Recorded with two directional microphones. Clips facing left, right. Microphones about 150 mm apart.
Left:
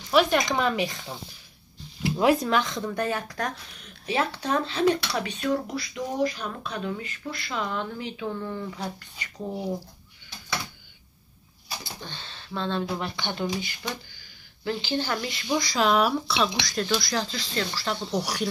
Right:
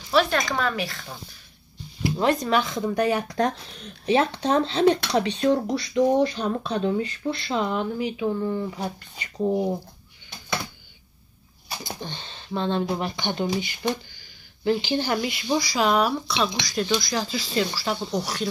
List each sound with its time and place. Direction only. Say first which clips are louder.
0.1 s speech: even; 15° left (ahead or behind)
2.1 s speech: even; 5° left (ahead or behind); by 3.3 s 15° right (ahead or behind)
3.3 s speech: right 7 dB; 25° right (ahead or behind)
11.8 s speech: right 5 dB; 15° right (ahead or behind)
18.2 s speech: even; 10° left (ahead or behind)